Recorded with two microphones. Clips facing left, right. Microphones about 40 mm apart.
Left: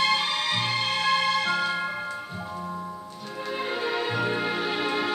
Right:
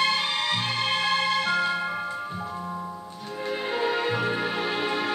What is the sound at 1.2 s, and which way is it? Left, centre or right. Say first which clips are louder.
Music: even; centre.